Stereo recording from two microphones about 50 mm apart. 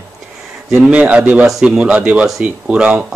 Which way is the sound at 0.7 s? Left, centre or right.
Right.